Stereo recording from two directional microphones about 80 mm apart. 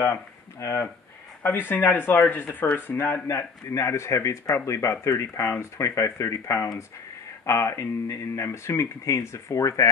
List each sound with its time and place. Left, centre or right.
0.0 s speech: left